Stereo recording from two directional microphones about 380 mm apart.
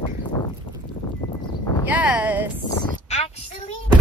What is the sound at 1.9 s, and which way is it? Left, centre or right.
Speech, centre.